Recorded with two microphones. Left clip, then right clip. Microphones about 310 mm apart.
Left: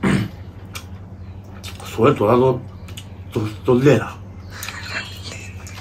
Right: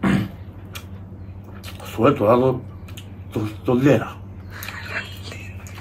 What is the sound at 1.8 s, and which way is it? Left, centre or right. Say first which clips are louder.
Speech: left 1 dB; centre.